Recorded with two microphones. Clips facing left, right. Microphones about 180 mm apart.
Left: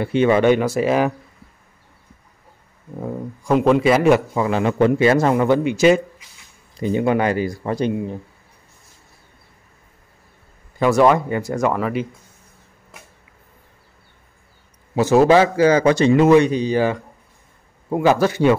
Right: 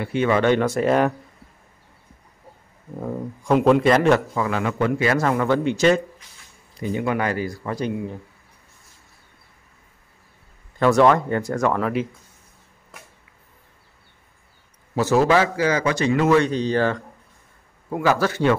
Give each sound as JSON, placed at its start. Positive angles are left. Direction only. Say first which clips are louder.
{"t": 0.0, "sound": "speech", "louder": "left 4 dB", "side_deg": 20}
{"t": 3.0, "sound": "speech", "louder": "left 1 dB", "side_deg": 0}
{"t": 4.4, "sound": "a man's voice", "louder": "left 5 dB", "side_deg": 25}
{"t": 6.8, "sound": "a man's voice", "louder": "left 5 dB", "side_deg": 25}
{"t": 10.8, "sound": "speech", "louder": "left 1 dB", "side_deg": 10}
{"t": 15.0, "sound": "a man's voice", "louder": "left 4 dB", "side_deg": 20}
{"t": 17.8, "sound": "speech", "louder": "left 4 dB", "side_deg": 25}